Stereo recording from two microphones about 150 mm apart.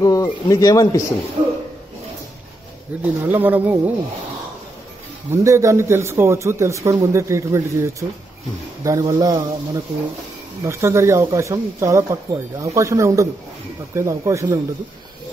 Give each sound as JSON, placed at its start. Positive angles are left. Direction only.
{"t": 0.0, "sound": "speech", "side_deg": 25}
{"t": 1.4, "sound": "a sound", "side_deg": -35}
{"t": 3.0, "sound": "speech", "side_deg": -10}
{"t": 5.3, "sound": "speech", "side_deg": -20}
{"t": 10.6, "sound": "speech", "side_deg": -20}